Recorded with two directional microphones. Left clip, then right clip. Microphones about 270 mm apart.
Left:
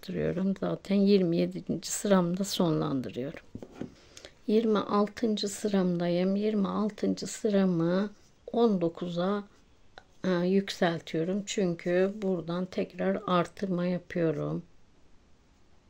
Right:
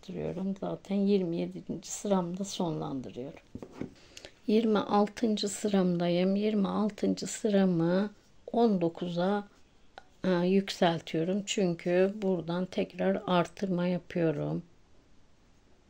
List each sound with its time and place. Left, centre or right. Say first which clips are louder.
0.0 s speech: left 5 dB; left
3.5 s speech: even; centre